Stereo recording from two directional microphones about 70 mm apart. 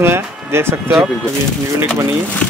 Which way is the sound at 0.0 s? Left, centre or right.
Right.